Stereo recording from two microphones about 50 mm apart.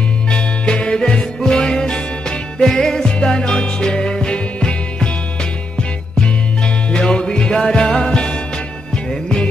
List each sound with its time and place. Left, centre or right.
0.3 s music: centre
6.2 s music: centre